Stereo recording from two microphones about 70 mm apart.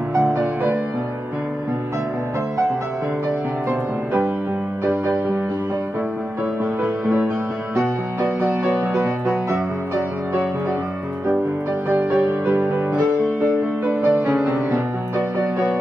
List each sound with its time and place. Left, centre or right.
4.8 s music: right
6.6 s music: right
11.9 s music: right